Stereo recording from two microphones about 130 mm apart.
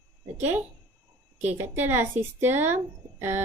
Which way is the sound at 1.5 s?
15° right (ahead or behind).